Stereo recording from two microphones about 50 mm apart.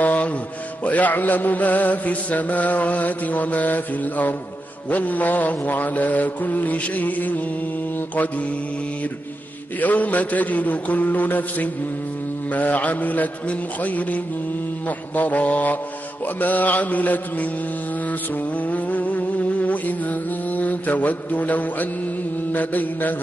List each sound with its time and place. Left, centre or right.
0.0 s mantra: left
0.8 s chant: left
9.8 s chant: left
18.6 s mantra: left
22.5 s chant: left